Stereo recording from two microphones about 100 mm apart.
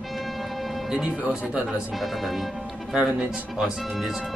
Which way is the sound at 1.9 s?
Centre (ahead or behind).